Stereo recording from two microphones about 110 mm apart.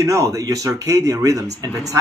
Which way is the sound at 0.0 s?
30° right (ahead or behind).